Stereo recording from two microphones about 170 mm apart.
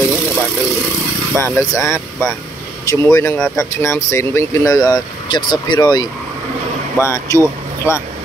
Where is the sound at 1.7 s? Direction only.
Centre (ahead or behind).